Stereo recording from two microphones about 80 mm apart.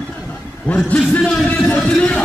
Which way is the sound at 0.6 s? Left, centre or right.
Centre.